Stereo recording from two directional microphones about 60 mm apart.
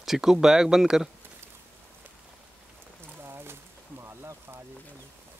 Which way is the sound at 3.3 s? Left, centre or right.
Right.